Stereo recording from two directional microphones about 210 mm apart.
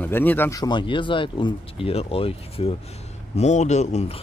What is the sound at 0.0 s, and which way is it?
Speech, 10° left (ahead or behind).